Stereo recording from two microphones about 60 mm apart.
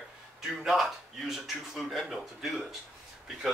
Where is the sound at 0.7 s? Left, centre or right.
Centre.